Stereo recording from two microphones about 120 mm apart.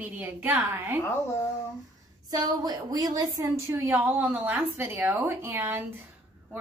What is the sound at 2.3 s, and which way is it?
A woman's voice, 35° right (ahead or behind).